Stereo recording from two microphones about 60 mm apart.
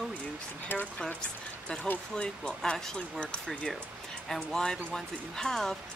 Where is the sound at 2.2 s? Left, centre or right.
Centre.